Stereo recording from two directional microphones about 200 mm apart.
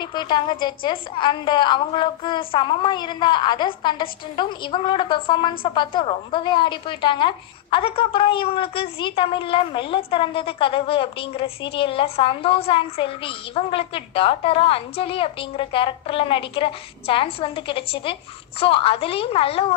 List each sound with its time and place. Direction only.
0.0 s a woman's voice: 20° left (ahead or behind)